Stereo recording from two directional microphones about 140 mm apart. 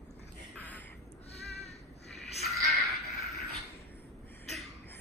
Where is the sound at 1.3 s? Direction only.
50° left (ahead or behind).